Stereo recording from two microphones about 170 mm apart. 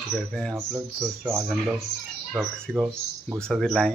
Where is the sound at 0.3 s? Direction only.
5° left (ahead or behind).